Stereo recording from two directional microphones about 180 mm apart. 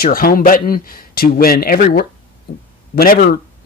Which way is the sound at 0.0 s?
55° left (ahead or behind).